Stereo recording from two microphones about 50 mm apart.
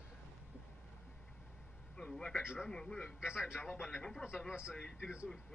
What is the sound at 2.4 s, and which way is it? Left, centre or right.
Speech, centre.